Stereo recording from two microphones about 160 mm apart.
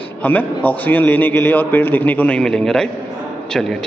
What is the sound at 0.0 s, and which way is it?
A man's voice, 10° left (ahead or behind).